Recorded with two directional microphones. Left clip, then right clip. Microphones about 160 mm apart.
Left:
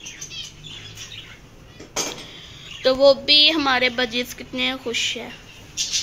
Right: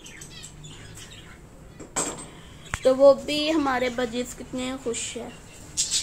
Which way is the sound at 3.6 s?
10° right (ahead or behind).